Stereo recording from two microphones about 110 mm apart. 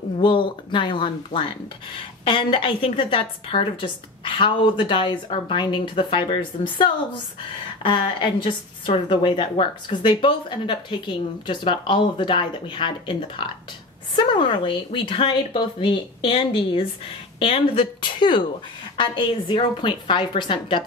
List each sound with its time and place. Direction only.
0.2 s a woman's voice: 45° left (ahead or behind)
16.3 s a woman's voice: 60° left (ahead or behind)